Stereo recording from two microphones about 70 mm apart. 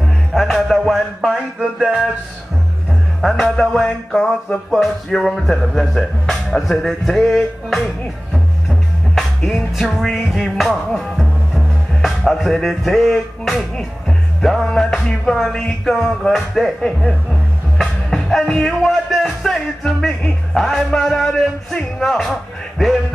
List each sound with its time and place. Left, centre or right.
0.0 s music: centre
3.2 s music: centre